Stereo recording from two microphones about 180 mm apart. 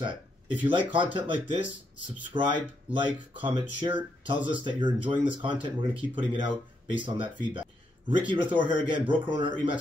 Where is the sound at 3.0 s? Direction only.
30° right (ahead or behind).